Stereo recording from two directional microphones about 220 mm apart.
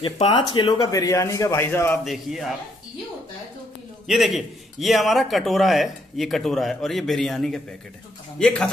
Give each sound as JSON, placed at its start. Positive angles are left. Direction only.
{"t": 0.0, "sound": "a man's voice", "side_deg": 20}
{"t": 2.1, "sound": "a man's voice", "side_deg": 0}
{"t": 4.1, "sound": "a man's voice", "side_deg": 0}